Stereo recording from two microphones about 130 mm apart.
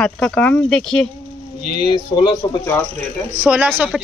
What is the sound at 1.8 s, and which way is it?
Speech, 35° left (ahead or behind).